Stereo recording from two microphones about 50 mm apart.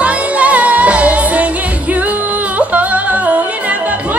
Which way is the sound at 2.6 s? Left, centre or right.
Right.